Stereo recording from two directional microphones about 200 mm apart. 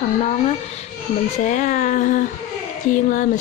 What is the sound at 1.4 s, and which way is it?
Speech, 40° left (ahead or behind).